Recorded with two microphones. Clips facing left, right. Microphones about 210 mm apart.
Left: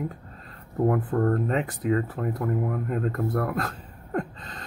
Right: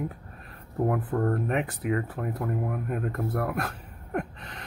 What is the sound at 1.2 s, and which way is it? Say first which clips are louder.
Speech: left 2 dB; 15° right (ahead or behind).